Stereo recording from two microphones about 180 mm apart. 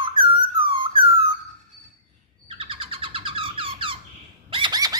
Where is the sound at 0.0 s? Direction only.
30° right (ahead or behind).